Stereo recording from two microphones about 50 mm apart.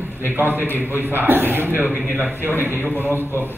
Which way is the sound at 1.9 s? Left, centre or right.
Right.